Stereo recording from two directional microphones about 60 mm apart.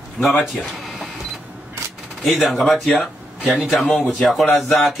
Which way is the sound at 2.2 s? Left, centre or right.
Centre.